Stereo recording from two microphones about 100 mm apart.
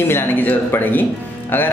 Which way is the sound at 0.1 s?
20° left (ahead or behind).